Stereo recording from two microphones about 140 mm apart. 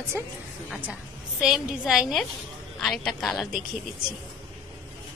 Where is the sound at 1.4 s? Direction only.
5° right (ahead or behind).